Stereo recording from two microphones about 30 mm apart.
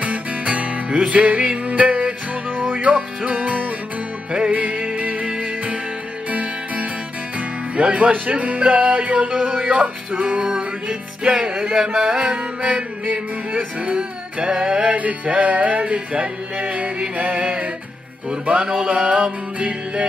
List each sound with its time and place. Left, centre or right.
0.0 s music: right
2.5 s music: right
6.3 s music: right
7.3 s music: right
11.2 s music: right
11.7 s music: right
12.2 s music: right
13.1 s music: right
13.7 s music: right
18.3 s music: right
18.9 s music: right